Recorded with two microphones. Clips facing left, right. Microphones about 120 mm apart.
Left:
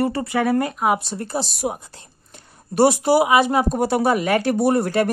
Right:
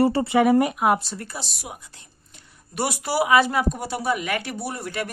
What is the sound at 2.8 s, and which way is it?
Speech, 25° left (ahead or behind).